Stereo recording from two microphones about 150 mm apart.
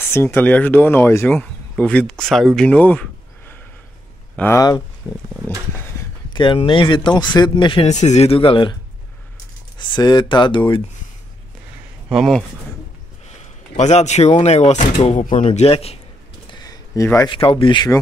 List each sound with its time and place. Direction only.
0.1 s speech: 15° left (ahead or behind)
6.3 s speech: 35° left (ahead or behind)
7.9 s speech: 50° left (ahead or behind)
9.8 s speech: 30° left (ahead or behind)
12.1 s speech: centre (ahead or behind)
13.7 s speech: 50° left (ahead or behind)
15.5 s speech: 45° left (ahead or behind)
16.4 s a sound: 25° left (ahead or behind)
17.3 s speech: 35° left (ahead or behind)